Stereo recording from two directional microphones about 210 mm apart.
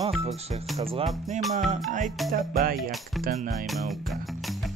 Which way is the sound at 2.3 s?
45° right (ahead or behind).